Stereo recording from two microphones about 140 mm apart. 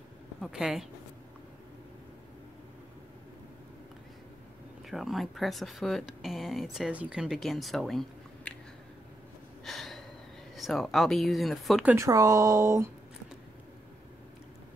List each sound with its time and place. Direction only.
0.4 s speech: 5° right (ahead or behind)
4.8 s speech: centre (ahead or behind)
9.7 s gasp: centre (ahead or behind)
10.5 s speech: centre (ahead or behind)
11.9 s speech: 25° right (ahead or behind)